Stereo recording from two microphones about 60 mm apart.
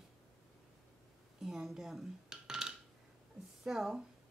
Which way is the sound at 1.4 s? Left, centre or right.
Centre.